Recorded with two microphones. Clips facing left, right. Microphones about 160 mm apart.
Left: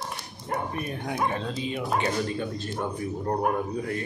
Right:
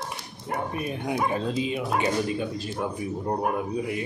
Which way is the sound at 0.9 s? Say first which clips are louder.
Right 3 dB; 10° right (ahead or behind).